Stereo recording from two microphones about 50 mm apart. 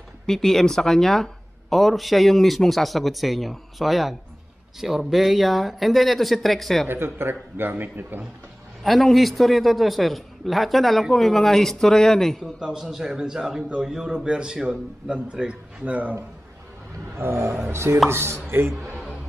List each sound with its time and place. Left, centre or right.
0.3 s speech: centre
6.9 s a man's voice: right
8.8 s speech: centre
12.5 s a man's voice: centre; by 16.2 s right
17.2 s chopping: right
18.1 s a man's voice: right